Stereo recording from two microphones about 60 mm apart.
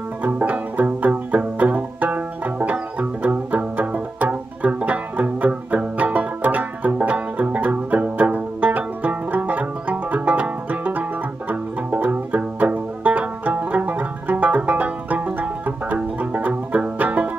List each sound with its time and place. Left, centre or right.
0.2 s music: right